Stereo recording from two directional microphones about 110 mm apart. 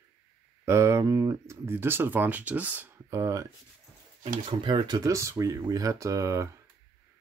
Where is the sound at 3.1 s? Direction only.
30° right (ahead or behind).